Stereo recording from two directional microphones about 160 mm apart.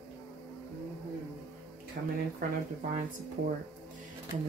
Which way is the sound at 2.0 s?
60° right (ahead or behind).